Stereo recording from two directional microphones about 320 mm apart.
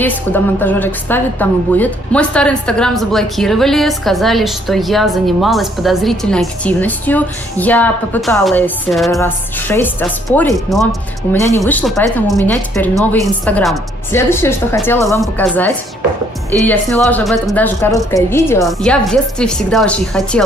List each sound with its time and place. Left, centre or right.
0.0 s a woman's voice: centre